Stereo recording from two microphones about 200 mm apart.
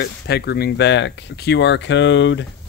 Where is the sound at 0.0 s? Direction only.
55° left (ahead or behind).